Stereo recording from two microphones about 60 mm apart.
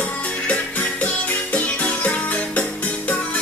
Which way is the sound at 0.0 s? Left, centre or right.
Left.